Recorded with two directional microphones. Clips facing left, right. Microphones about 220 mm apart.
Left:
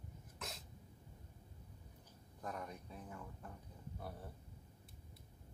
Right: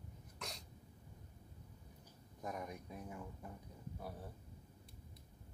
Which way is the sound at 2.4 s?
10° right (ahead or behind).